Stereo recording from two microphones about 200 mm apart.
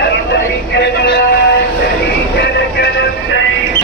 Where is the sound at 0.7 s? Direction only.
55° left (ahead or behind).